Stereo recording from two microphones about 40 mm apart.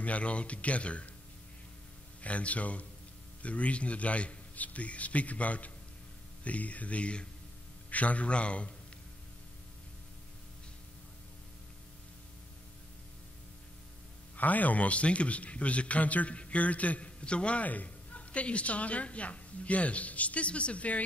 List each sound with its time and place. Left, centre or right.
0.0 s a woman's voice: left
2.2 s a woman's voice: left
14.3 s a woman's voice: left
17.6 s a woman's voice: left